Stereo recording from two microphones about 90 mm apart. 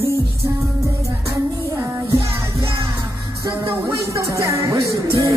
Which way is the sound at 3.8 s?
35° right (ahead or behind).